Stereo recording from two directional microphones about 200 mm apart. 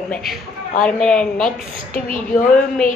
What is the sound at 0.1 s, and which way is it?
A woman's voice, centre (ahead or behind).